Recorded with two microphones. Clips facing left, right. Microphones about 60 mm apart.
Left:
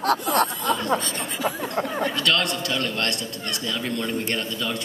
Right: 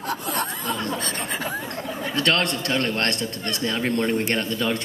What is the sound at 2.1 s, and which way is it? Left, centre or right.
Speech, right.